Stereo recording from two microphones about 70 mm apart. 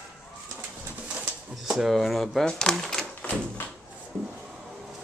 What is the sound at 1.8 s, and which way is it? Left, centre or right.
Speech, centre.